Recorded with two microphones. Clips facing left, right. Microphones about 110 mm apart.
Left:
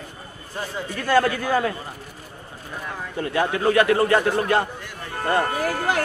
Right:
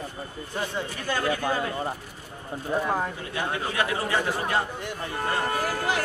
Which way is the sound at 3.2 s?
65° left (ahead or behind).